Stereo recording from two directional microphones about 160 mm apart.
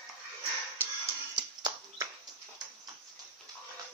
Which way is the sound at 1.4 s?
25° right (ahead or behind).